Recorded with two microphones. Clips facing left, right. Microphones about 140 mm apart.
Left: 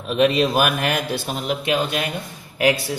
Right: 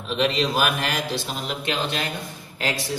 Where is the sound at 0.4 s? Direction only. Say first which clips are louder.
Left 4 dB; 55° left (ahead or behind).